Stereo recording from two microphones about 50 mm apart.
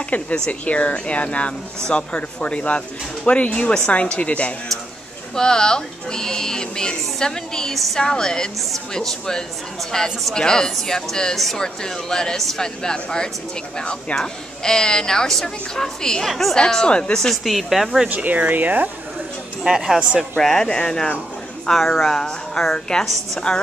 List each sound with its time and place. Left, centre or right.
0.1 s speech: left
5.3 s a woman's voice: centre
11.6 s a woman's voice: centre
16.5 s speech: centre
17.3 s a woman's voice: centre
18.0 s speech: right
19.6 s speech: centre
20.3 s speech: centre
21.6 s speech: centre